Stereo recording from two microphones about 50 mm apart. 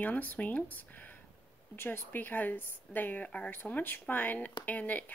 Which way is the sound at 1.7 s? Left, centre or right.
Left.